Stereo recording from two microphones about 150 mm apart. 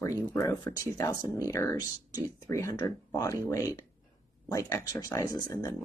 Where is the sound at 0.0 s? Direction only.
20° left (ahead or behind).